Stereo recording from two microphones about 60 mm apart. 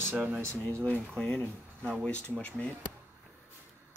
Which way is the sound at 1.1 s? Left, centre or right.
Centre.